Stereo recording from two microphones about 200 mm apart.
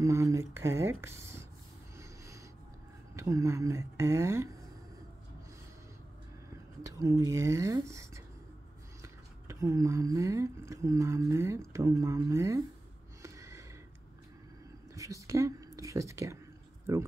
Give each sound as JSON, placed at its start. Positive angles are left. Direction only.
{"t": 0.0, "sound": "speech", "side_deg": -15}
{"t": 2.0, "sound": "snort", "side_deg": -15}
{"t": 3.2, "sound": "speech", "side_deg": -15}
{"t": 6.8, "sound": "speech", "side_deg": -15}
{"t": 13.2, "sound": "a sound", "side_deg": -15}
{"t": 15.0, "sound": "speech", "side_deg": -15}